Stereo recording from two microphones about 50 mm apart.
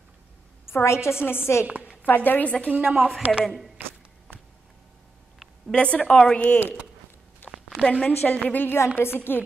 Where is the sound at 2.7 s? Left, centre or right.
Right.